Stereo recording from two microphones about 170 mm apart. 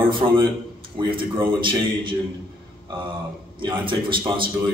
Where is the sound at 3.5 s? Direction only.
30° right (ahead or behind).